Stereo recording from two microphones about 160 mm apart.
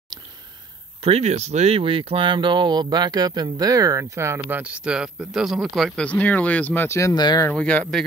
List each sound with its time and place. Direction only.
1.0 s speech: 40° right (ahead or behind); by 7.4 s 25° left (ahead or behind)
7.4 s speech: 10° left (ahead or behind)